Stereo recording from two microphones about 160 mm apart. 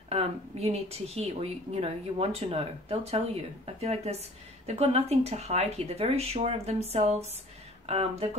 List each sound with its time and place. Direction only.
0.1 s speech: 40° right (ahead or behind)